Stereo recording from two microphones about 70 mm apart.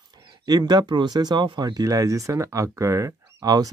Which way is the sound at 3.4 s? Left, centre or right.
Right.